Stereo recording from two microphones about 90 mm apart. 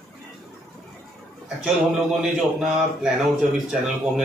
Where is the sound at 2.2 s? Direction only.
5° right (ahead or behind).